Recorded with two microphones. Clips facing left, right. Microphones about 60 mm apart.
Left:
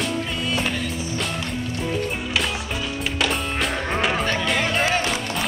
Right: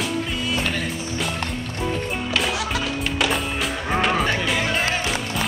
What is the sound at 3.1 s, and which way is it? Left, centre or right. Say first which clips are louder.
Music: even; centre.